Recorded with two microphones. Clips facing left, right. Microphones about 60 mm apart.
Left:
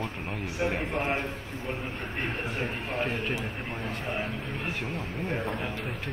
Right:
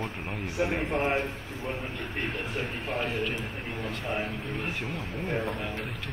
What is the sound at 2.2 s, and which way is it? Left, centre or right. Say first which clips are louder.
A man's voice: left 1 dB; left.